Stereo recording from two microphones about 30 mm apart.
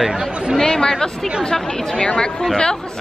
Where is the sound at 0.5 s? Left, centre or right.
Centre.